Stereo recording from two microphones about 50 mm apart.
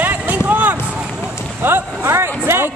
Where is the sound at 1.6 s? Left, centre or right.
Right.